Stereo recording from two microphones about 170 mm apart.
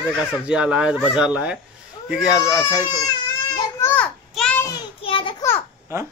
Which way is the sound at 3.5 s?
15° left (ahead or behind).